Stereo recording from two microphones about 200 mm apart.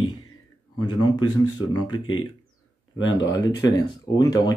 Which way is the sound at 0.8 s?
20° left (ahead or behind).